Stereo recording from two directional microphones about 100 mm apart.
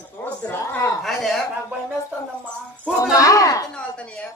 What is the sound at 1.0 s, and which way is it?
Speech, centre (ahead or behind).